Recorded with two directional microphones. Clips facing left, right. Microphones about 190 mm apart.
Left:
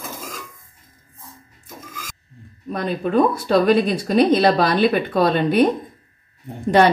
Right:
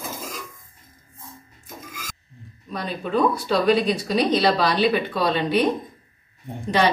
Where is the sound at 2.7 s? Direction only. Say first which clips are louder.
Left 5 dB; 50° left (ahead or behind).